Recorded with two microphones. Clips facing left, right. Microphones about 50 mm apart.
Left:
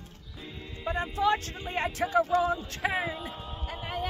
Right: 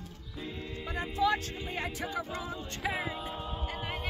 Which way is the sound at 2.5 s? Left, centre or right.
Left.